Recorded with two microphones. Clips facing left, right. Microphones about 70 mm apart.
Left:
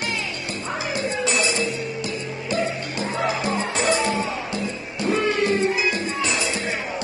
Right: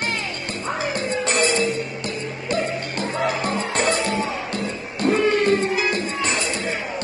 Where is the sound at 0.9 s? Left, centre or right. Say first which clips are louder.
Even; right.